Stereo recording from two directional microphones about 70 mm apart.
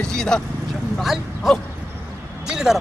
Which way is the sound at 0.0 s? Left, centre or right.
Centre.